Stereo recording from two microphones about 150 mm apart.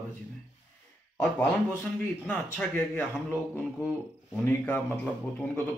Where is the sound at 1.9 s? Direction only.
5° left (ahead or behind).